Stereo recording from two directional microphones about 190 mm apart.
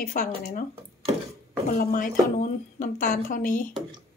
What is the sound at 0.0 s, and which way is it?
Speech, 50° left (ahead or behind).